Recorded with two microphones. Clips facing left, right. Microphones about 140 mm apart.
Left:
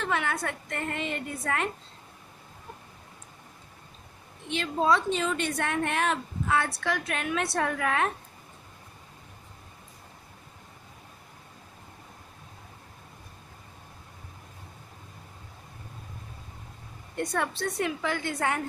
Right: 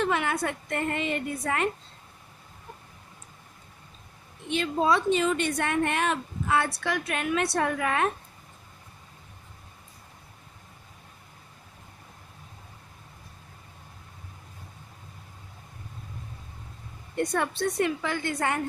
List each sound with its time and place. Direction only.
0.1 s a woman's voice: 5° right (ahead or behind)
4.5 s a woman's voice: 5° right (ahead or behind)
17.2 s a woman's voice: centre (ahead or behind)